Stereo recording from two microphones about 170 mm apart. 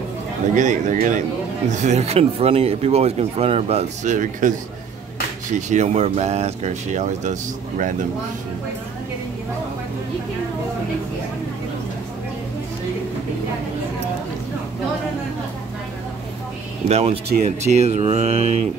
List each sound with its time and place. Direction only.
0.6 s speech: 45° right (ahead or behind)
16.8 s speech: 40° right (ahead or behind)